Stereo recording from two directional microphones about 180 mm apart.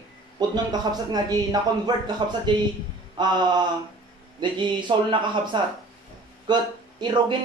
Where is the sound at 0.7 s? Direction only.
20° right (ahead or behind).